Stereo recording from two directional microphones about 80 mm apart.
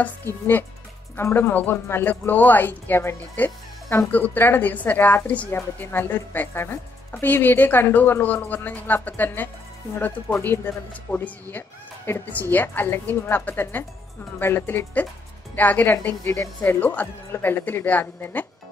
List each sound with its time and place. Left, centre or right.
1.1 s a woman's voice: left